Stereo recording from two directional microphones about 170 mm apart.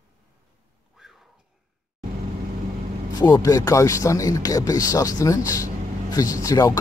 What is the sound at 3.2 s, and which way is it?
Speech, 25° left (ahead or behind).